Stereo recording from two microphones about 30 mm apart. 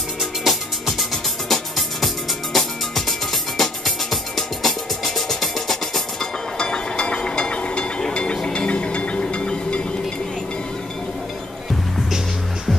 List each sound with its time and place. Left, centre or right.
0.5 s music: centre
6.6 s ratchet: left
8.1 s a sound: left